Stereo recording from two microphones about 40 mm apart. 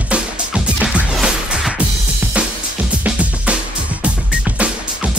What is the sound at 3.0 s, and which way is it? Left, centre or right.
Music, right.